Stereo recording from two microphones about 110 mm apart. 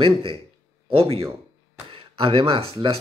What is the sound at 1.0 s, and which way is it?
Speech, 65° right (ahead or behind).